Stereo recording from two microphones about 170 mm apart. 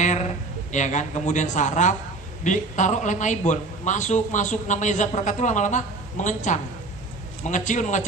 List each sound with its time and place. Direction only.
0.0 s a man's voice: 45° left (ahead or behind)